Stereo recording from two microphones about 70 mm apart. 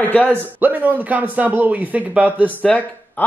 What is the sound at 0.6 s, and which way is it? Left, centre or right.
Speech, right.